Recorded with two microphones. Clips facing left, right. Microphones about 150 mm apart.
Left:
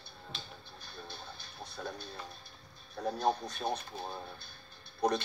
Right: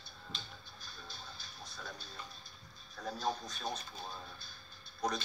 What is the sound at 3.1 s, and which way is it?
Speech, 60° left (ahead or behind).